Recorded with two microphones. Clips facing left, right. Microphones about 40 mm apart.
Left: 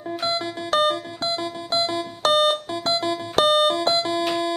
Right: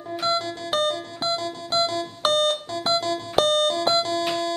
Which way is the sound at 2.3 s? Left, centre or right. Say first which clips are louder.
Left 4 dB; centre.